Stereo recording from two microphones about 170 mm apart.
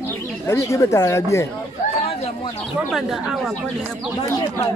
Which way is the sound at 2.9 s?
Centre (ahead or behind).